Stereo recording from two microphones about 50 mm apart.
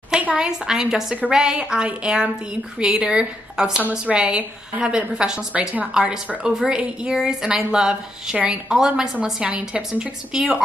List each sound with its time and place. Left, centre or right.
0.4 s a woman's voice: centre
6.5 s a woman's voice: centre